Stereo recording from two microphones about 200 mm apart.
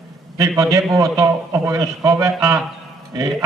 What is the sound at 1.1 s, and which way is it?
A man's voice, 15° right (ahead or behind).